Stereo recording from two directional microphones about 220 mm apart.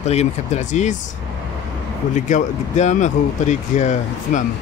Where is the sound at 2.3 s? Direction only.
35° left (ahead or behind).